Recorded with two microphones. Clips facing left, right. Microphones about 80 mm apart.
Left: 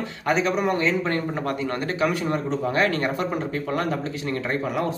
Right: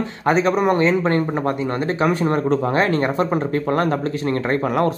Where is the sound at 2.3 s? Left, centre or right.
Right.